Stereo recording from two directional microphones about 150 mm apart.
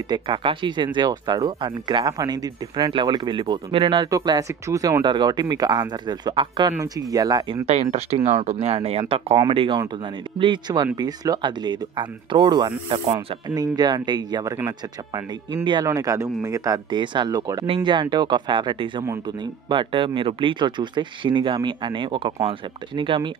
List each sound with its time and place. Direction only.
0.1 s speech: 35° right (ahead or behind)
7.6 s speech: 45° right (ahead or behind); by 14.5 s 30° right (ahead or behind)
15.5 s speech: 30° right (ahead or behind)